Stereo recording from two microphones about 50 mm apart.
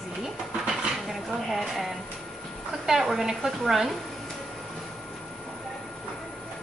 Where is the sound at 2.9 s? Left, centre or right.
Centre.